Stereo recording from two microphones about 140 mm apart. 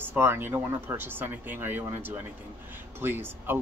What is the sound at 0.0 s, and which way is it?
Speech, 15° right (ahead or behind).